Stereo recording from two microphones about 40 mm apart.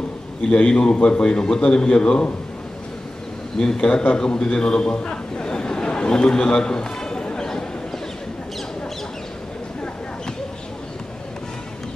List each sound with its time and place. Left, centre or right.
0.7 s a man's voice: left
0.9 s speech: left
1.2 s a man's voice: left
3.5 s a man's voice: centre
7.3 s a sound: centre